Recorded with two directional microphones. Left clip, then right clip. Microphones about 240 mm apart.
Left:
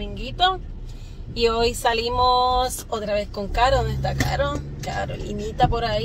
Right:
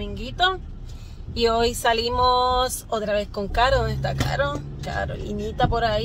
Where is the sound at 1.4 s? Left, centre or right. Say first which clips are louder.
Even; centre.